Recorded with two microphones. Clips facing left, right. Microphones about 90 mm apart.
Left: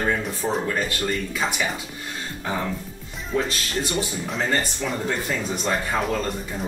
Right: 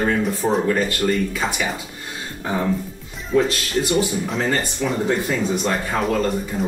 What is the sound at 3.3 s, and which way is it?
Speech, centre (ahead or behind).